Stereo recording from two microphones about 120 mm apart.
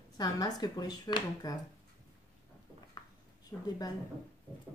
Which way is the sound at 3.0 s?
35° left (ahead or behind).